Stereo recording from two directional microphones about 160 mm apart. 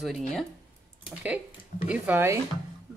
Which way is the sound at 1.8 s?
10° right (ahead or behind).